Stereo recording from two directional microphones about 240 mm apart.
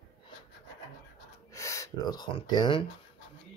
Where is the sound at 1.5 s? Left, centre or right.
Centre.